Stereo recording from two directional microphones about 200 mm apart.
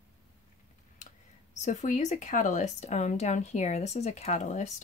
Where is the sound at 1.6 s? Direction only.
35° left (ahead or behind).